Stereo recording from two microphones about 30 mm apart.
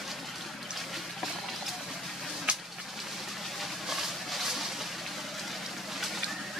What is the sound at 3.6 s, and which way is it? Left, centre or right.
Vehicle, centre.